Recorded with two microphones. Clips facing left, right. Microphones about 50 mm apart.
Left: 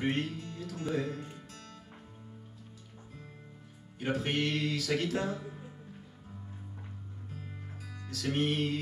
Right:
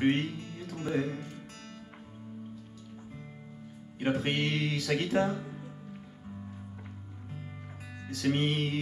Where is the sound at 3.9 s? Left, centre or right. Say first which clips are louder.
Right 2 dB; right.